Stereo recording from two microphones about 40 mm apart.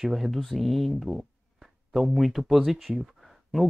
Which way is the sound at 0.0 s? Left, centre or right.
Centre.